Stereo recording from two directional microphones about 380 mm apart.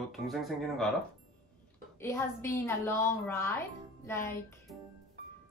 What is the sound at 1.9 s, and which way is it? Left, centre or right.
A woman's voice, centre.